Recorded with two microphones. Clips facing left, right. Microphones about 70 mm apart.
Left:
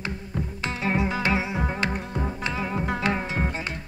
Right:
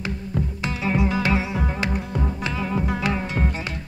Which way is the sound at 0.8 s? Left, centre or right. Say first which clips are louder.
Right 2 dB; left.